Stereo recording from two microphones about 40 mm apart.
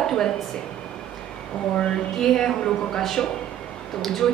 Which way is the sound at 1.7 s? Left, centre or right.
Centre.